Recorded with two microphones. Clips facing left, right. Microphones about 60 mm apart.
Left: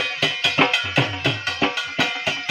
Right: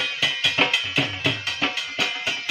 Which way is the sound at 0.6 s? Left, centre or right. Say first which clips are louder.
Left 5 dB; left.